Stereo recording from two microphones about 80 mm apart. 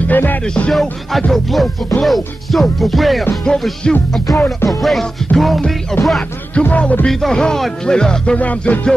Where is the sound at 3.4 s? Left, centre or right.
Centre.